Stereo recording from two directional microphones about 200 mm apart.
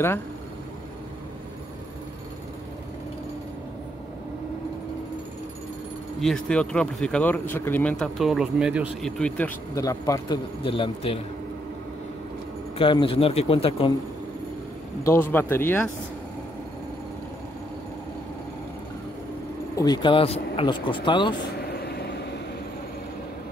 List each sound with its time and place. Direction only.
6.2 s speech: 5° left (ahead or behind)
8.0 s speech: centre (ahead or behind)
9.8 s speech: 15° left (ahead or behind)
12.7 s speech: 25° left (ahead or behind)
15.0 s speech: 10° left (ahead or behind)
19.7 s speech: 20° left (ahead or behind)
21.5 s vehicle: 50° left (ahead or behind)